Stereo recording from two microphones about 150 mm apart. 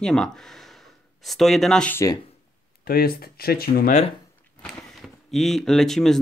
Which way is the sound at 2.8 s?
85° left.